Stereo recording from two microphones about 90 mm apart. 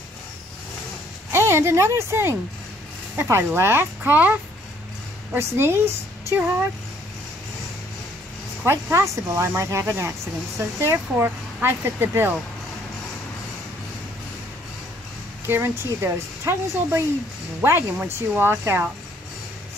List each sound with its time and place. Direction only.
1.3 s speech: 30° right (ahead or behind)
8.9 s speech: 35° right (ahead or behind)
15.4 s speech: 25° right (ahead or behind)